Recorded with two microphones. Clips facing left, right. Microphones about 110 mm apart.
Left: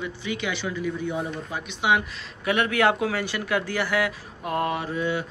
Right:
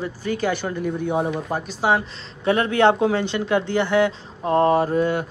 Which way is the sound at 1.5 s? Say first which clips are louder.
Right 1 dB; 35° right (ahead or behind).